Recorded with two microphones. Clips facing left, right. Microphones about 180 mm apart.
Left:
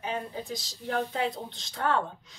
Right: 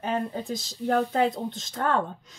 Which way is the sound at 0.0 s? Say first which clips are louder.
Right 5 dB; 50° right (ahead or behind).